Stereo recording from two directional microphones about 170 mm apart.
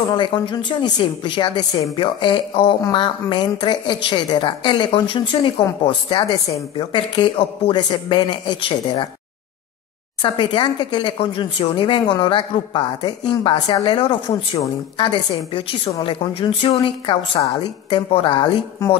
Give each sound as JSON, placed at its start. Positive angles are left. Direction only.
{"t": 0.1, "sound": "a woman's voice", "side_deg": 25}
{"t": 10.2, "sound": "a woman's voice", "side_deg": 30}